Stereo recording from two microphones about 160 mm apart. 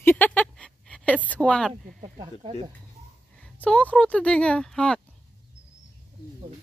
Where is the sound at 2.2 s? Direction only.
35° right (ahead or behind).